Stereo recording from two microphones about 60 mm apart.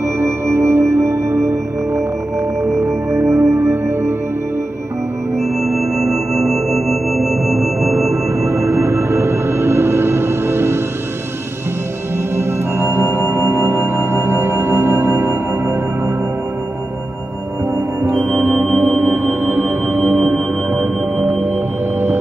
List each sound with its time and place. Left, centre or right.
0.2 s music: right
2.8 s music: right
6.1 s music: centre
7.8 s music: right
12.4 s music: right
18.1 s gong: right